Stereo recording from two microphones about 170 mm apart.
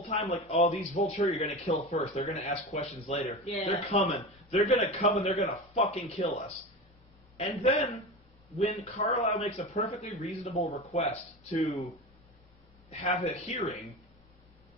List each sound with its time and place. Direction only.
0.1 s speech: 30° left (ahead or behind)
13.0 s speech: 40° left (ahead or behind)